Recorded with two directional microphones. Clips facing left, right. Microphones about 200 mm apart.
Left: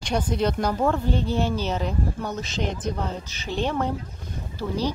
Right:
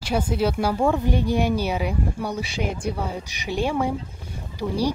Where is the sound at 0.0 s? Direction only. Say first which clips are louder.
Right 1 dB; 5° right (ahead or behind).